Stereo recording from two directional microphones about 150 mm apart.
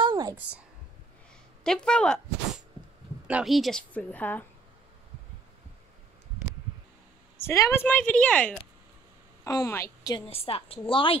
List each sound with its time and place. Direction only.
0.0 s a sound: 25° right (ahead or behind)
0.4 s a woman's voice: 10° right (ahead or behind)
1.6 s a woman's voice: 5° left (ahead or behind)
3.3 s a woman's voice: 5° right (ahead or behind); by 4.5 s 10° left (ahead or behind)
7.4 s a woman's voice: 20° left (ahead or behind)
9.4 s a woman's voice: 20° left (ahead or behind)
10.1 s a woman's voice: 40° left (ahead or behind)